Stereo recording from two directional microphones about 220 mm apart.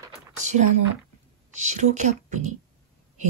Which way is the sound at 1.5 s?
35° right (ahead or behind).